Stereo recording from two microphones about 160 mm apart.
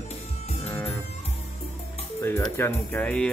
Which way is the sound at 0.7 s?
10° left (ahead or behind).